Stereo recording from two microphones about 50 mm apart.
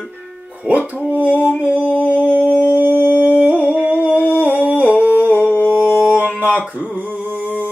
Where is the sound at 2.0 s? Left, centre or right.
Right.